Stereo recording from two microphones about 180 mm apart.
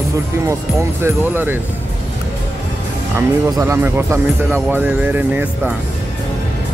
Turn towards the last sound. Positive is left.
turn(degrees=-10)  # may be behind; listen again after turning